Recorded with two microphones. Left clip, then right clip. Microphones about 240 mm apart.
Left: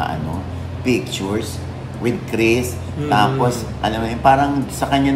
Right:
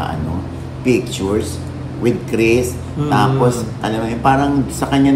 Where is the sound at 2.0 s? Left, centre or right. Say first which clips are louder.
Right 2 dB; centre.